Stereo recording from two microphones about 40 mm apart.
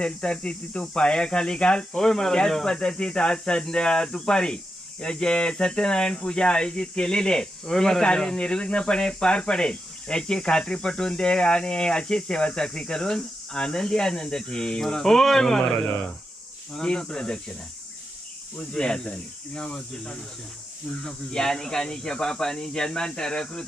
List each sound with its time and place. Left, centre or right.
0.0 s speech: left; by 15.9 s centre
16.7 s speech: left
18.6 s speech: left